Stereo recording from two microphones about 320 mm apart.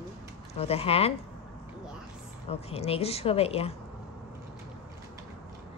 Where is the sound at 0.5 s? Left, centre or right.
Centre.